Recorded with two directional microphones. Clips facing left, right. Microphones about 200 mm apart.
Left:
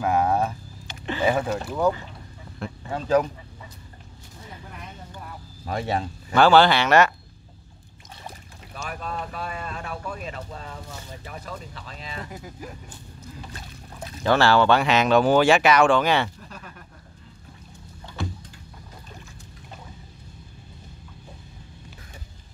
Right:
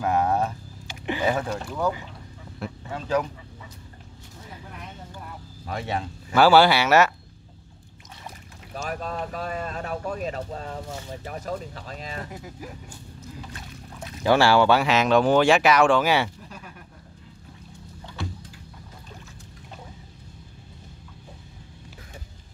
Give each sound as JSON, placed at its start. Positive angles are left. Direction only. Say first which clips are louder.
{"t": 0.0, "sound": "speech", "louder": "left 1 dB", "side_deg": 10}
{"t": 0.8, "sound": "a sound", "louder": "right 1 dB", "side_deg": -15}
{"t": 1.2, "sound": "speech", "louder": "left 3 dB", "side_deg": 10}
{"t": 2.9, "sound": "speech", "louder": "left 4 dB", "side_deg": 40}
{"t": 5.7, "sound": "speech", "louder": "left 3 dB", "side_deg": 40}
{"t": 6.3, "sound": "speech", "louder": "even", "side_deg": -5}
{"t": 8.8, "sound": "speech", "louder": "right 2 dB", "side_deg": -40}
{"t": 12.3, "sound": "speech", "louder": "even", "side_deg": -5}
{"t": 13.5, "sound": "boat", "louder": "right 1 dB", "side_deg": 35}
{"t": 14.2, "sound": "speech", "louder": "right 1 dB", "side_deg": -10}